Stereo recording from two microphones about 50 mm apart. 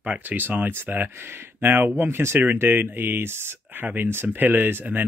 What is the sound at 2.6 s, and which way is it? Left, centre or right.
Speech, right.